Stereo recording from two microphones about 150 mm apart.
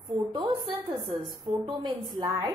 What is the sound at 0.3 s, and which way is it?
A woman's voice, 30° right (ahead or behind).